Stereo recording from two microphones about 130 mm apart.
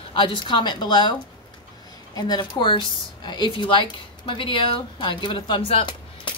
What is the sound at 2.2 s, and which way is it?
Speech, 35° left (ahead or behind).